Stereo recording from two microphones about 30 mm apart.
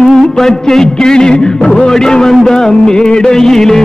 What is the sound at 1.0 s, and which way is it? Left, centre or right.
Music, left.